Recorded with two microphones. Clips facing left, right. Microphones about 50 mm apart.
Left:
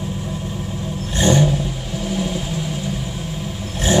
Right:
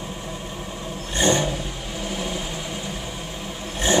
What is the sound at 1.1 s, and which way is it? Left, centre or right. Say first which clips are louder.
Vehicle: left 4 dB; centre.